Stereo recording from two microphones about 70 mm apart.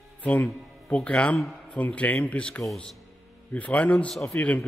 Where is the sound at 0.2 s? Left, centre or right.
Left.